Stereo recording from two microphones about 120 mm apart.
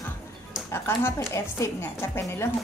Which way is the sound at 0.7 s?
20° left (ahead or behind).